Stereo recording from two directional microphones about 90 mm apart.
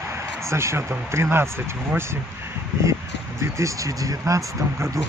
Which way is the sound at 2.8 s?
35° right (ahead or behind).